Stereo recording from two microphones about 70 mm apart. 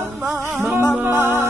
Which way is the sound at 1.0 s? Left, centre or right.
Right.